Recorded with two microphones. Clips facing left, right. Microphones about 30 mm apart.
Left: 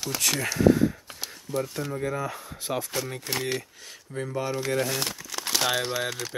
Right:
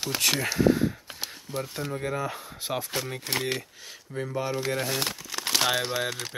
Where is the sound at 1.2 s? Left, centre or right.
Right.